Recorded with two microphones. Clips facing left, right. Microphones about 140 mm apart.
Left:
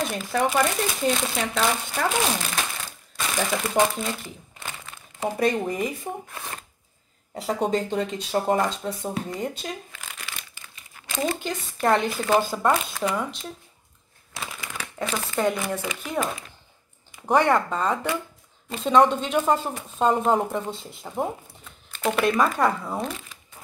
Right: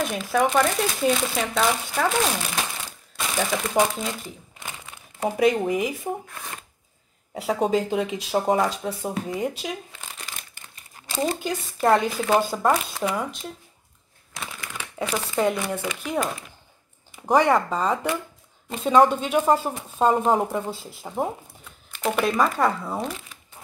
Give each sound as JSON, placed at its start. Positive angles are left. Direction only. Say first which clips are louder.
{"t": 0.0, "sound": "speech", "louder": "right 2 dB", "side_deg": 0}
{"t": 2.4, "sound": "crumpling", "louder": "right 1 dB", "side_deg": -10}
{"t": 7.3, "sound": "speech", "louder": "right 2 dB", "side_deg": 0}
{"t": 9.9, "sound": "crumpling", "louder": "even", "side_deg": -35}
{"t": 11.4, "sound": "speech", "louder": "right 2 dB", "side_deg": -5}
{"t": 14.3, "sound": "speech", "louder": "even", "side_deg": 5}